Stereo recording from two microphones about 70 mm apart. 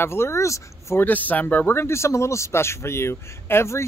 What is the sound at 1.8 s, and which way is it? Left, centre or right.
Speech, left.